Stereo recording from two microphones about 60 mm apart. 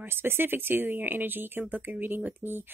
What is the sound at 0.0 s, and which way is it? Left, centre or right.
Speech, right.